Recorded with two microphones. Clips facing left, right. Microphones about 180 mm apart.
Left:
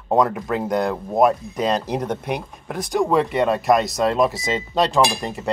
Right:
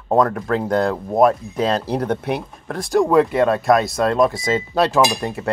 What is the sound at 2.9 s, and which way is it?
Speech, centre (ahead or behind).